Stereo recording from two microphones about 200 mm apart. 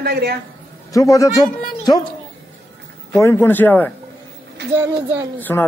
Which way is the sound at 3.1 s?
15° left (ahead or behind).